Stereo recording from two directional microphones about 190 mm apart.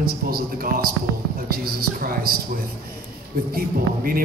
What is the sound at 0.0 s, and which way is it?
A man's voice, 50° right (ahead or behind).